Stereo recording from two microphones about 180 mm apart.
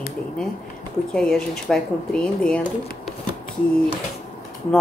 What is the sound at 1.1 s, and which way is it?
Speech, 5° left (ahead or behind).